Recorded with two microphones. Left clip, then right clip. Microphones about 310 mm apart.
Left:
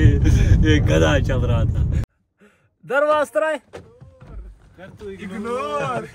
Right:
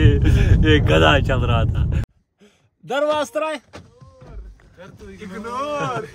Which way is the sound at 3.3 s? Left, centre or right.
Centre.